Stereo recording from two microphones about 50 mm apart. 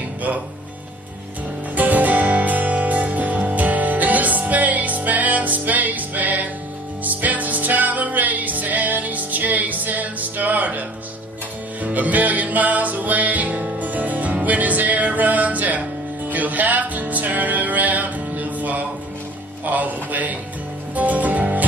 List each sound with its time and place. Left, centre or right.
1.8 s music: right
11.8 s music: right